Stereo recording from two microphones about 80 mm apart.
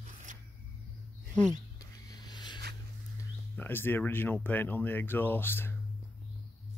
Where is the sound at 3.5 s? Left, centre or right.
Left.